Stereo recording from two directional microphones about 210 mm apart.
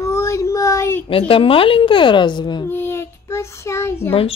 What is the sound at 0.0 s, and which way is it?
Child singing, 15° left (ahead or behind).